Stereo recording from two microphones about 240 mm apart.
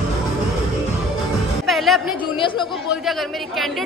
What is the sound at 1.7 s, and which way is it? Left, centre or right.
Speech, centre.